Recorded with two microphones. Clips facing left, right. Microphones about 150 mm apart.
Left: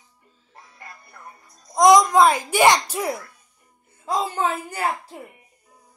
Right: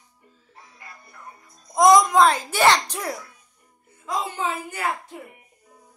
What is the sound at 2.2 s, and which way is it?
Speech, 15° left (ahead or behind).